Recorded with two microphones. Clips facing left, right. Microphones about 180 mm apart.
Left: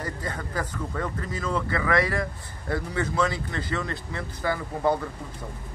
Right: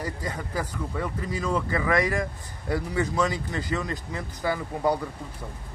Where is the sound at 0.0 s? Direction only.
15° right (ahead or behind).